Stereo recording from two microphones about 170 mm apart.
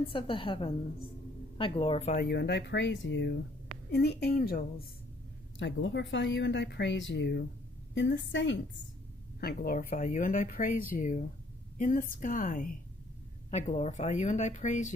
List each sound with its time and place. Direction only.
0.0 s a woman's voice: 30° left (ahead or behind)
2.1 s speech: 75° left (ahead or behind); by 3.3 s 90° left
3.9 s a woman's voice: 75° left (ahead or behind); by 4.8 s 60° left (ahead or behind)
5.6 s speech: 90° left
9.4 s speech: 65° left (ahead or behind); by 14.9 s 45° left (ahead or behind)